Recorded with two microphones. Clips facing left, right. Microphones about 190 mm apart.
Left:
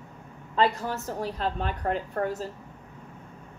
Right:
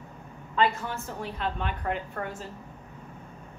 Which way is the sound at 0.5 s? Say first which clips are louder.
Left 1 dB; 35° left (ahead or behind).